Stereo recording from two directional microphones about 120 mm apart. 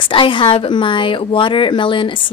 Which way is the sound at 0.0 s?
45° left (ahead or behind).